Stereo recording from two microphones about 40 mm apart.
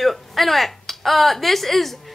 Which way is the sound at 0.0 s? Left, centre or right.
Centre.